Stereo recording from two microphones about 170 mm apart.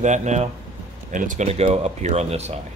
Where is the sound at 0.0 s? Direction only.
45° right (ahead or behind).